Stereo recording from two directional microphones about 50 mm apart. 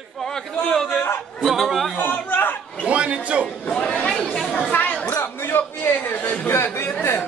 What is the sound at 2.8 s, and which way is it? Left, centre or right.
Speech, right.